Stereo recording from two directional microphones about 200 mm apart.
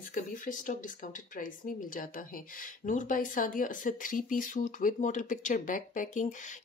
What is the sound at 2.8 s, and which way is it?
Speech, 40° left (ahead or behind).